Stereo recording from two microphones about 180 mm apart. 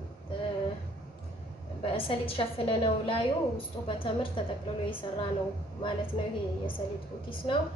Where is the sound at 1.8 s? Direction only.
30° left (ahead or behind).